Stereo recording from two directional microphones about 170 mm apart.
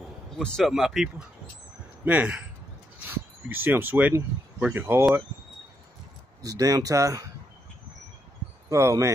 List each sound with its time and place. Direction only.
0.4 s speech: centre (ahead or behind)
6.4 s speech: 20° right (ahead or behind)
8.6 s speech: 20° right (ahead or behind)